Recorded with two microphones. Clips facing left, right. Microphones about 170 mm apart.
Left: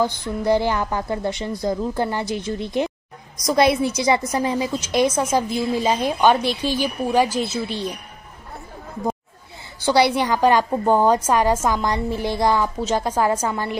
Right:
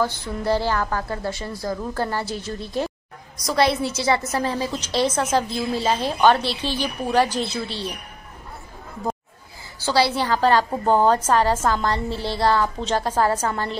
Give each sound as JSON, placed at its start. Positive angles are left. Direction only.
{"t": 0.0, "sound": "a woman's voice", "side_deg": 15}
{"t": 9.9, "sound": "a woman's voice", "side_deg": 20}